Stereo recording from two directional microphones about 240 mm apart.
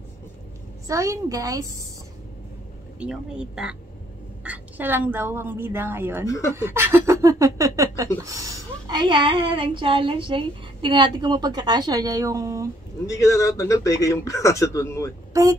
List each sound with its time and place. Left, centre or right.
0.8 s speech: centre
3.0 s a woman's voice: centre
13.0 s a man's voice: centre